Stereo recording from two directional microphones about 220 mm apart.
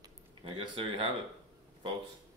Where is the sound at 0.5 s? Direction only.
25° right (ahead or behind).